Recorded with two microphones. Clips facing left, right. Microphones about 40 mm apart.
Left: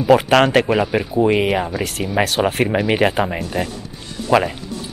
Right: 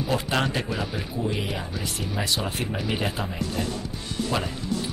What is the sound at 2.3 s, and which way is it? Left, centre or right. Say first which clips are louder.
Speech: left 11 dB; left.